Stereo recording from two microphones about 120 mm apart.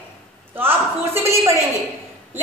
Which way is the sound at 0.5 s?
20° right (ahead or behind).